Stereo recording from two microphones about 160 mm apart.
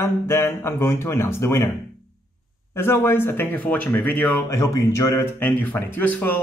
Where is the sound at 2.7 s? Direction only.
15° left (ahead or behind).